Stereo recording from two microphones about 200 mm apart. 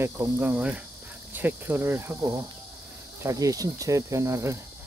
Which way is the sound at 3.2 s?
15° right (ahead or behind).